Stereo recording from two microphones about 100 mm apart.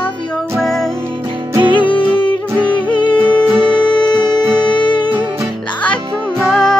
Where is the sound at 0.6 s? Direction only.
5° left (ahead or behind).